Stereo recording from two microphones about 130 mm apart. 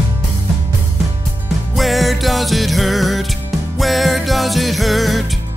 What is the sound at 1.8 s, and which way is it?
Music, centre (ahead or behind).